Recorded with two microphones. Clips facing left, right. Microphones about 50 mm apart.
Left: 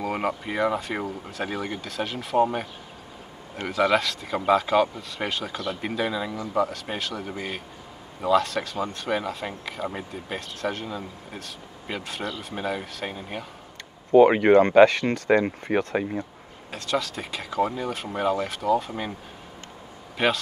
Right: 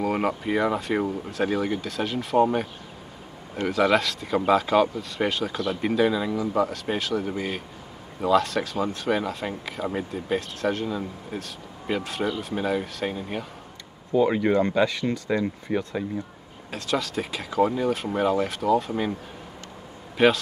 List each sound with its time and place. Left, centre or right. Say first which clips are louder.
0.0 s speech: right 2 dB; centre
14.1 s speech: left 6 dB; left
16.7 s speech: right 1 dB; centre
20.2 s speech: right 4 dB; centre